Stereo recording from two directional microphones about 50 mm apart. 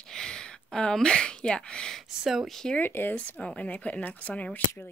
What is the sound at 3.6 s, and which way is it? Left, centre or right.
Speech, left.